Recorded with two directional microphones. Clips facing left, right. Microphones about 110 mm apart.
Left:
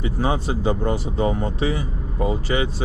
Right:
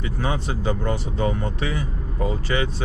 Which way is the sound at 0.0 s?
25° left (ahead or behind).